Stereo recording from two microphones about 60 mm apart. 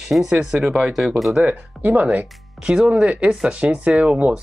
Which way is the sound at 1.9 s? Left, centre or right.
Right.